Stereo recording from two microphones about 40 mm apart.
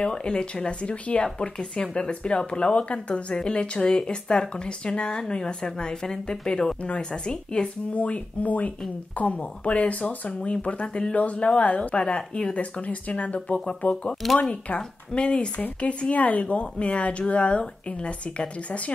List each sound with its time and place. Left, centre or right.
0.0 s speech: left
6.8 s speech: left
7.9 s speech: left
12.0 s speech: left
12.5 s speech: left